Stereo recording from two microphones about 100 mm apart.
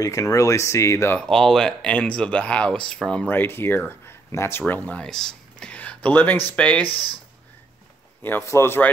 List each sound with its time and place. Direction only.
0.0 s speech: 35° left (ahead or behind)
1.2 s speech: 5° left (ahead or behind)
8.2 s speech: 20° left (ahead or behind)